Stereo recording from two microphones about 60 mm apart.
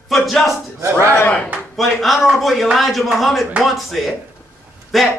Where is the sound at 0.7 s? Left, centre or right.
Right.